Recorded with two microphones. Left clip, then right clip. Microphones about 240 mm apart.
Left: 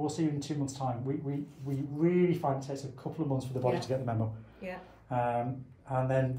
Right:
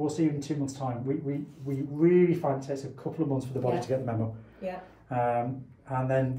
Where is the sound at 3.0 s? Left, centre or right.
Left.